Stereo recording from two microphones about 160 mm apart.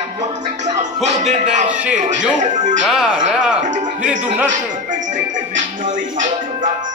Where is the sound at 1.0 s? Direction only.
45° right (ahead or behind).